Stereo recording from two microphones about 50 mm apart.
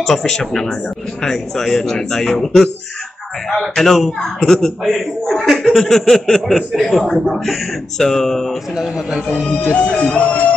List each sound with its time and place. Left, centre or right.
0.0 s speech: centre
9.7 s music: left